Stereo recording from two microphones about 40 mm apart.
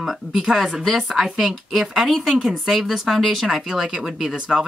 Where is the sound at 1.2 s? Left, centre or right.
Centre.